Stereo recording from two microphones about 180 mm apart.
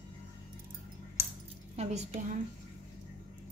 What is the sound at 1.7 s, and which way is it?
Speech, 40° right (ahead or behind).